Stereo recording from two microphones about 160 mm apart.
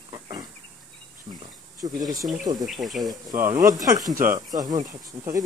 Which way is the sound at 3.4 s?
60° right (ahead or behind).